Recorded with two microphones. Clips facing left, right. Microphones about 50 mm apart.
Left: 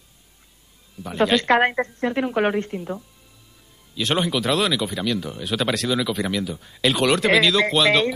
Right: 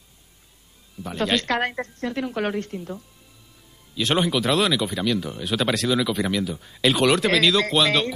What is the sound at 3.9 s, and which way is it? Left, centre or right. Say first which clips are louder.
A man's voice: even; centre.